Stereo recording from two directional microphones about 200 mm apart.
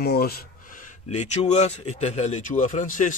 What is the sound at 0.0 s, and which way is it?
A man's voice, 50° left (ahead or behind).